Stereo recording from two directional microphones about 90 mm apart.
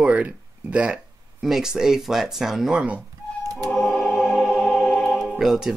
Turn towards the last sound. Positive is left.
turn(degrees=-5)  # may be behind; listen again after turning